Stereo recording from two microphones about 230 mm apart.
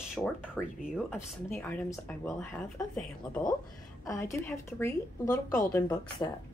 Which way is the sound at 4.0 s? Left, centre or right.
Centre.